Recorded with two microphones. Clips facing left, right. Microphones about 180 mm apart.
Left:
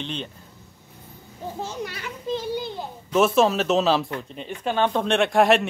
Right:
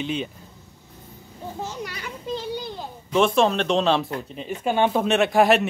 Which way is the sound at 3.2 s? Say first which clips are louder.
Even; 5° left (ahead or behind).